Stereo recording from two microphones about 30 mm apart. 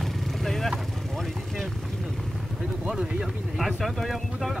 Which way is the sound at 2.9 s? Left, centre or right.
Centre.